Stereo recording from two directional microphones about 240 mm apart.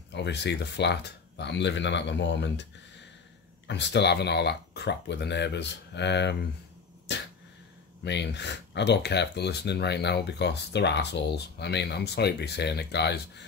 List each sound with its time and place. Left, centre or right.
0.1 s speech: left
3.6 s speech: left
7.1 s a sound: left
8.0 s speech: left